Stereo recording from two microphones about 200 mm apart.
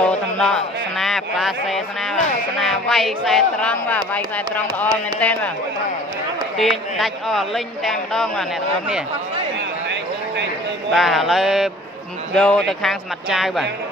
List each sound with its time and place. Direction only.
0.0 s speech: 5° left (ahead or behind)
6.6 s speech: centre (ahead or behind)
9.8 s a sound: 60° right (ahead or behind)
10.9 s speech: centre (ahead or behind)